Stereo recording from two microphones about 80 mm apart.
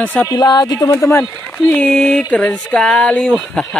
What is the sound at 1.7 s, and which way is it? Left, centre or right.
Speech, centre.